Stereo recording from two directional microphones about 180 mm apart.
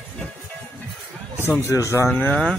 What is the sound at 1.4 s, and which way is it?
Speech, 15° left (ahead or behind).